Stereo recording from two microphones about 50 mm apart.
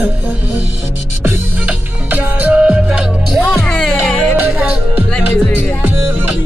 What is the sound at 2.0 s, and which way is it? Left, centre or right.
Music, right.